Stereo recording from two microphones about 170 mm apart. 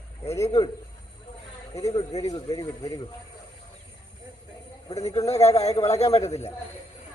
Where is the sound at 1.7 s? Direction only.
20° left (ahead or behind).